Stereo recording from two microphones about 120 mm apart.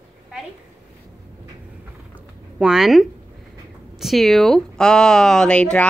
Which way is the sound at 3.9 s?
Centre (ahead or behind).